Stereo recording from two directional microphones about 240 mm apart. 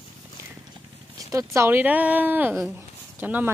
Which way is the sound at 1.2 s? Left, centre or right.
Centre.